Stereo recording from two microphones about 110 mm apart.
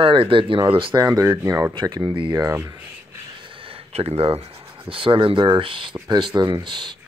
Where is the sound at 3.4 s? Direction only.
55° right (ahead or behind).